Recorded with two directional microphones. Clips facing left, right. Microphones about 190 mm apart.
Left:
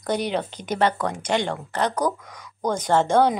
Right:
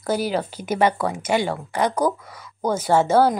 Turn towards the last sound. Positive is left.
turn(degrees=-5)  # may be behind; listen again after turning